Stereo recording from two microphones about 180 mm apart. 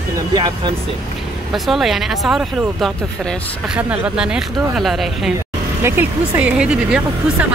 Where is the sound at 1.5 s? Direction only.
Centre (ahead or behind).